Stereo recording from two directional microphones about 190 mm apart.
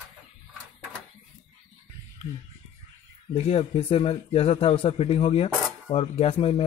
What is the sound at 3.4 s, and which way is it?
Speech, 30° left (ahead or behind).